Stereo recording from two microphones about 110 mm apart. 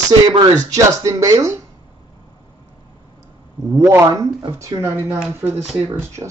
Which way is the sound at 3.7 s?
25° right (ahead or behind).